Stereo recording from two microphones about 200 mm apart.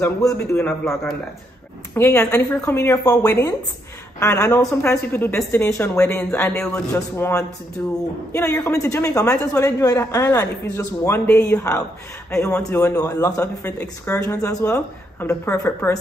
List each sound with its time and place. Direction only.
0.0 s speech: 15° left (ahead or behind)
0.6 s a man's voice: 5° left (ahead or behind)
2.0 s speech: 15° left (ahead or behind)